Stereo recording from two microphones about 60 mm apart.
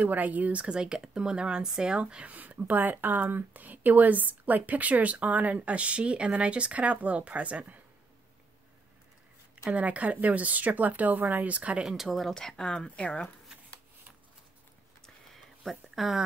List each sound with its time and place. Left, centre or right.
0.0 s speech: right
9.7 s speech: right
11.8 s speech: centre
15.3 s a sound: centre